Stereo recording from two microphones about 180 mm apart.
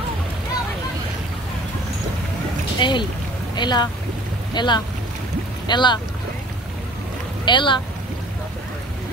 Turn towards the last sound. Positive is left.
turn(degrees=25)  # may be behind; listen again after turning